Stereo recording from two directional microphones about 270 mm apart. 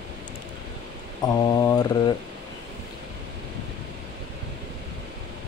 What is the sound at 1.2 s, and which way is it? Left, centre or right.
Speech, centre.